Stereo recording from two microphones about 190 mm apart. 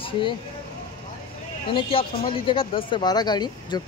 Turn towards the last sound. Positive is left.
turn(degrees=20)  # may be behind; listen again after turning